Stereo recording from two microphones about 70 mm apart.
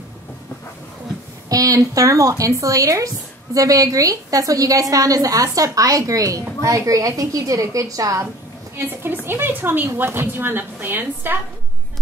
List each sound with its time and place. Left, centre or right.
1.5 s a woman's voice: right
8.7 s a woman's voice: right